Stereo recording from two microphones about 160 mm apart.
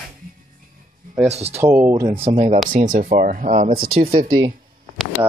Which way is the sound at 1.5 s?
15° right (ahead or behind).